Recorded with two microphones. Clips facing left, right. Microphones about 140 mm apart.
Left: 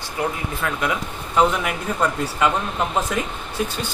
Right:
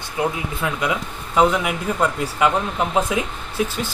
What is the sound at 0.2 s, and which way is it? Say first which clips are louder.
Speech: right 2 dB; 20° right (ahead or behind).